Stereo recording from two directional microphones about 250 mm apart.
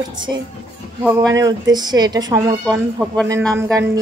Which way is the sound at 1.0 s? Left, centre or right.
Centre.